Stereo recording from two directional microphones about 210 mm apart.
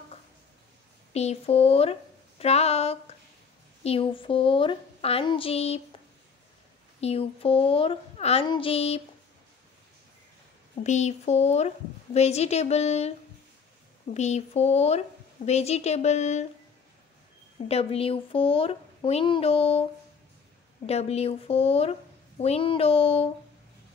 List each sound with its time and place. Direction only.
1.1 s a woman's voice: 30° left (ahead or behind)
7.0 s speech: 30° left (ahead or behind)
10.8 s a woman's voice: 35° left (ahead or behind)
14.1 s a woman's voice: 30° left (ahead or behind)
17.6 s speech: 30° left (ahead or behind)